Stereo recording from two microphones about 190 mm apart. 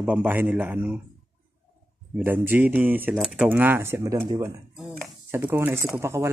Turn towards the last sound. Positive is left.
turn(degrees=-15)  # may be behind; listen again after turning